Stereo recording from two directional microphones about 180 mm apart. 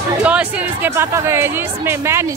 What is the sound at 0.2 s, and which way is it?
Speech, 5° right (ahead or behind).